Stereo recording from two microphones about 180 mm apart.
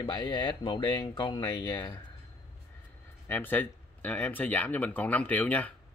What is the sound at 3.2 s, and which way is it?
Speech, 10° left (ahead or behind).